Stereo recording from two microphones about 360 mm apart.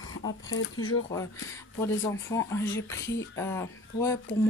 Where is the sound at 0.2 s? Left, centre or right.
Left.